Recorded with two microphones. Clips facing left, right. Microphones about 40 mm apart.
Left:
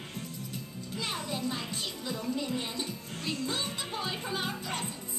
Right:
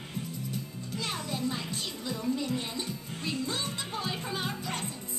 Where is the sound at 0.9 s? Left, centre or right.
Centre.